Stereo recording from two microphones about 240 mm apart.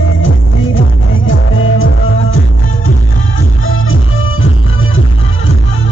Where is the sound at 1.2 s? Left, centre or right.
Left.